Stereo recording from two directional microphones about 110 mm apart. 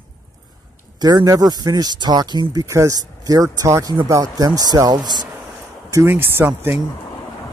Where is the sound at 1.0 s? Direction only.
35° right (ahead or behind).